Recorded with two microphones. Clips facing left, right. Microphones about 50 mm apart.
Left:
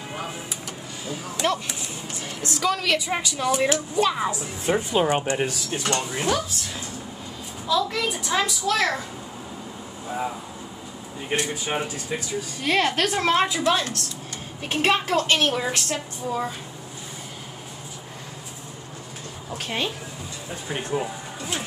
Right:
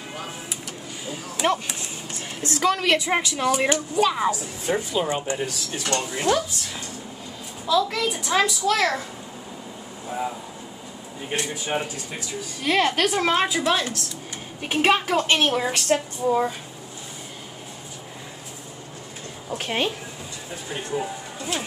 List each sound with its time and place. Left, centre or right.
1.4 s speech: centre
2.5 s a woman's voice: right
3.5 s a child's voice: centre
4.3 s a woman's voice: left
5.9 s speech: centre
7.6 s a child's voice: centre
10.0 s vehicle: centre
11.3 s a woman's voice: left
12.6 s a child's voice: centre
15.9 s speech: right
16.3 s speech: centre
19.6 s a woman's voice: right
20.9 s speech: centre